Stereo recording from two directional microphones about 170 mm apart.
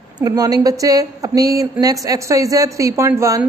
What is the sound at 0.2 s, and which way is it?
A woman's voice, 20° right (ahead or behind).